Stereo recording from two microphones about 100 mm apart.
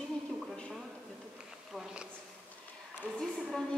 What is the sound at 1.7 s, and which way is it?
Speech, 5° right (ahead or behind).